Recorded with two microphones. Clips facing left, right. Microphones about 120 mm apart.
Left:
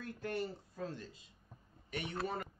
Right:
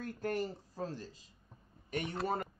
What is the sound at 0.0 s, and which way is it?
Speech, 40° right (ahead or behind).